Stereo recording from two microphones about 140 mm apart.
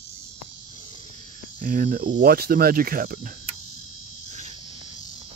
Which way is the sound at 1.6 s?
80° right.